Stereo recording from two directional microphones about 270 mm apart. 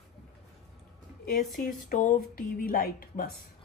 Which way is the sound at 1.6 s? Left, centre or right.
Left.